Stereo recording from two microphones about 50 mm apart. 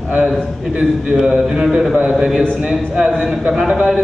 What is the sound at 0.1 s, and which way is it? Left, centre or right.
A man's voice, centre.